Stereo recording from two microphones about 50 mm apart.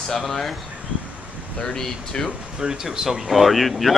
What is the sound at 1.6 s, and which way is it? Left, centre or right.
Speech, centre.